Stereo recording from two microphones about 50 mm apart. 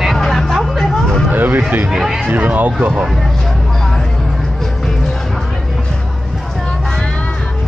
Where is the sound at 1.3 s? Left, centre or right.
Right.